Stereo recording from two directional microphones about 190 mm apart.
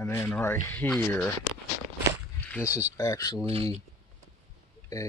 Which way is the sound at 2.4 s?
5° left (ahead or behind).